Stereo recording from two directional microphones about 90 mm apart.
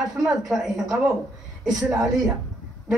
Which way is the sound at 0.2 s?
5° right (ahead or behind).